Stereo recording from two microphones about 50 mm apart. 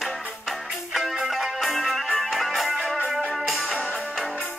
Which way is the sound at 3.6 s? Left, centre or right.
Left.